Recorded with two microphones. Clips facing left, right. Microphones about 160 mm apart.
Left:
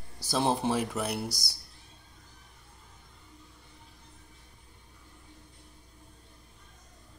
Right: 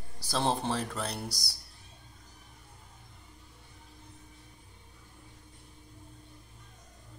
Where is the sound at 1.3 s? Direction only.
15° right (ahead or behind).